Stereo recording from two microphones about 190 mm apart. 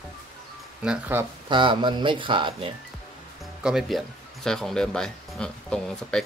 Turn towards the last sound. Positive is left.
turn(degrees=5)  # may be behind; listen again after turning